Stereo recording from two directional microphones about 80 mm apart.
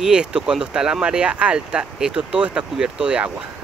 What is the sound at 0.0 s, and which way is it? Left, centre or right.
Speech, centre.